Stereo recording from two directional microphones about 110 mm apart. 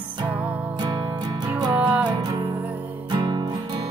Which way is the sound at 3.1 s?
40° right (ahead or behind).